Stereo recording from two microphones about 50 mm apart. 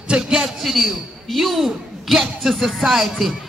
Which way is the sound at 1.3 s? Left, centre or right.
Centre.